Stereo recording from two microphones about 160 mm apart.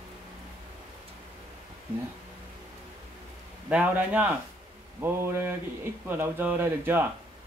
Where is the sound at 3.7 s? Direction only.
10° right (ahead or behind).